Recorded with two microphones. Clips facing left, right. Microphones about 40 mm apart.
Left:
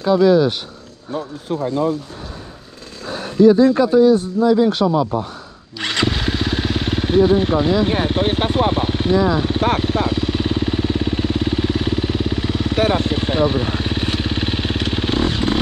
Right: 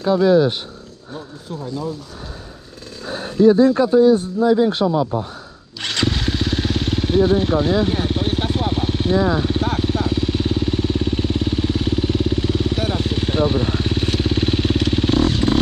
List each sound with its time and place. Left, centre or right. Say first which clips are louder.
0.2 s speech: even; centre
1.1 s speech: left 8 dB; left
3.1 s a sound: left 2 dB; centre
4.0 s speech: left 1 dB; centre
5.8 s motorcycle: left 2 dB; centre
7.8 s speech: left 2 dB; left
8.1 s vehicle: left 3 dB; left
9.1 s speech: left 2 dB; centre
10.0 s vehicle: left 1 dB; centre
13.2 s motorcycle: left 1 dB; centre